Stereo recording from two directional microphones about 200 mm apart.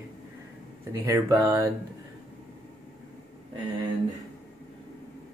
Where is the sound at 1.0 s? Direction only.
15° right (ahead or behind).